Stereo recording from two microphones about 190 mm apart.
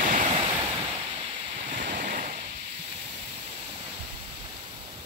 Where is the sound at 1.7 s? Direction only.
45° right (ahead or behind).